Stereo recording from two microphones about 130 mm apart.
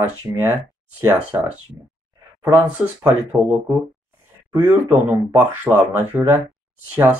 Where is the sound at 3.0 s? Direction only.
15° right (ahead or behind).